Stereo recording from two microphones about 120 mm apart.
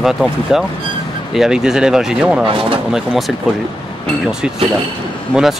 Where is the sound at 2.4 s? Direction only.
45° right (ahead or behind).